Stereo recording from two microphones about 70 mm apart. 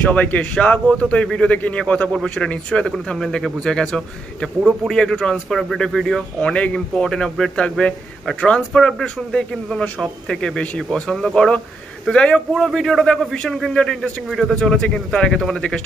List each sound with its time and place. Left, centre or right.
0.1 s a man's voice: left; by 6.2 s centre
6.4 s a man's voice: centre
12.5 s a man's voice: centre